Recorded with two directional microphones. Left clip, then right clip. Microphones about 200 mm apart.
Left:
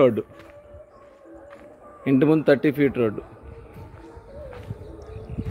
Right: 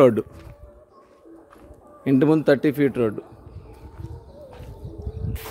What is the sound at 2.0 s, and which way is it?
A man's voice, 15° right (ahead or behind).